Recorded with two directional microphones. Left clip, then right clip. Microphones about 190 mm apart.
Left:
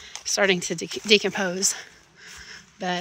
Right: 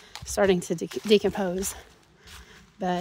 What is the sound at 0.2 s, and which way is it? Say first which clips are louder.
Speech: left 2 dB; 35° right (ahead or behind).